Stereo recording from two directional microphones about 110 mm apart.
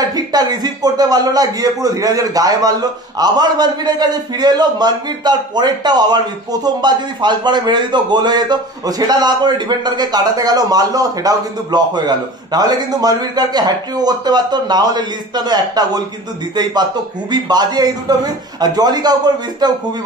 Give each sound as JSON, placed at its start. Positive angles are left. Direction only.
{"t": 0.1, "sound": "a man's voice", "side_deg": -35}
{"t": 17.3, "sound": "a man's voice", "side_deg": -40}